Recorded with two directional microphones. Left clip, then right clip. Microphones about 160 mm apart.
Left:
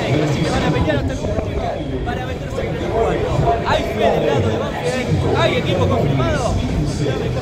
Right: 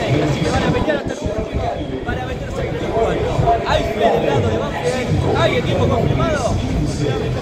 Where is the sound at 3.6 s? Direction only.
15° left (ahead or behind).